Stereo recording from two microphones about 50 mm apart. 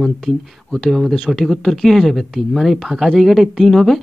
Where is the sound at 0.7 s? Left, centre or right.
Centre.